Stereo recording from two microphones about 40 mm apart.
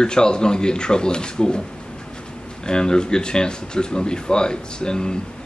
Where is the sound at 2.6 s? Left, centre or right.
Centre.